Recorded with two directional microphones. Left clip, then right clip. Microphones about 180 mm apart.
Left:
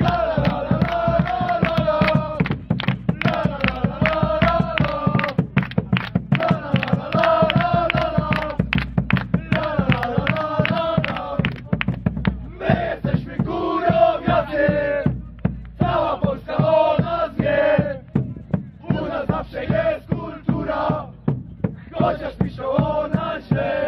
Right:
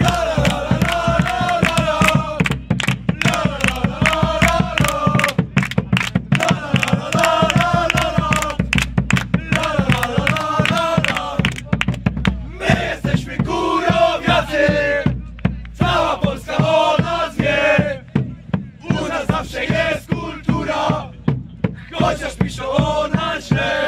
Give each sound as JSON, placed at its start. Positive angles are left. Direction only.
{"t": 0.0, "sound": "music", "side_deg": 45}